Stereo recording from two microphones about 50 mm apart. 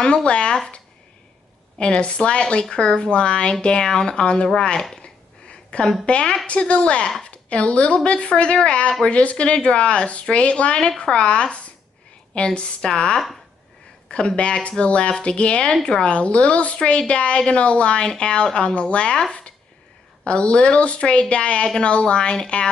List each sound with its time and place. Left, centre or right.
0.0 s speech: centre
2.0 s speech: left
4.9 s a sound: centre
6.0 s speech: left
20.2 s speech: left